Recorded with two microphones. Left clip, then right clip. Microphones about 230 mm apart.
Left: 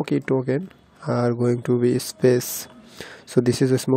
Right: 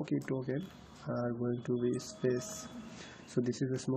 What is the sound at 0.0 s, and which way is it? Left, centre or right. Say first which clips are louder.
Speech: left 14 dB; left.